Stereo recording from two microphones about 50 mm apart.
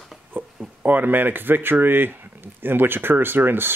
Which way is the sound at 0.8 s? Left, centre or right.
Right.